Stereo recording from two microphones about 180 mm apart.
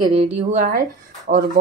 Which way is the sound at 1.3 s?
55° right (ahead or behind).